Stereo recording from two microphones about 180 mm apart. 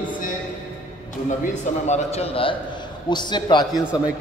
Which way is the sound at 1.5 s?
35° left (ahead or behind).